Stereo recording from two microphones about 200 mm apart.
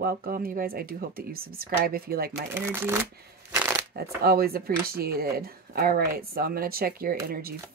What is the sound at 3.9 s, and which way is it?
Speech, 50° right (ahead or behind).